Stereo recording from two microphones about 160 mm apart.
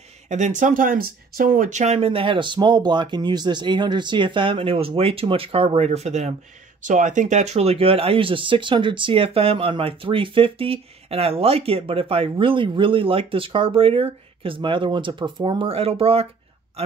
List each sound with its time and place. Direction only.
0.3 s speech: 50° right (ahead or behind)